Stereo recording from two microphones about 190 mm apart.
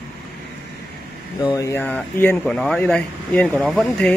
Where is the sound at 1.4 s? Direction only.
15° left (ahead or behind).